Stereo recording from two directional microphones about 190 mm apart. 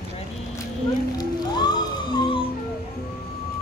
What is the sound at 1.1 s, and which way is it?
Music, 20° left (ahead or behind).